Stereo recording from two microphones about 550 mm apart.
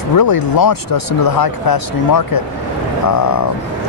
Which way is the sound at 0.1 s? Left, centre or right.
Left.